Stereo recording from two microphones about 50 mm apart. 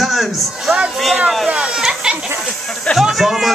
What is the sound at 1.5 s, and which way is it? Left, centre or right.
Speech, right.